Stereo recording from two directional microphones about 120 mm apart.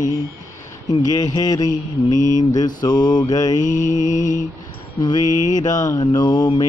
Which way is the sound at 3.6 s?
90° left.